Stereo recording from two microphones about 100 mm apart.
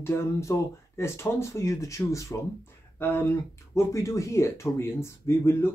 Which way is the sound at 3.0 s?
20° left (ahead or behind).